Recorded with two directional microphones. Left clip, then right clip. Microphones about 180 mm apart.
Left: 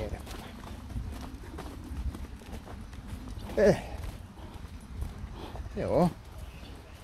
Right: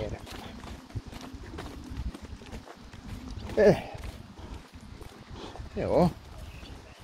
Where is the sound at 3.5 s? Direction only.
20° right (ahead or behind).